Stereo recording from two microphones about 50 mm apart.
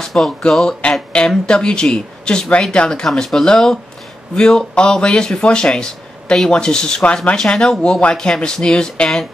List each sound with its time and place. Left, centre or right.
0.0 s speech: centre